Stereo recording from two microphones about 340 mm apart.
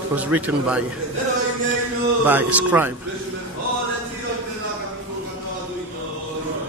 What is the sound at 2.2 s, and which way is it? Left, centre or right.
Speech, centre.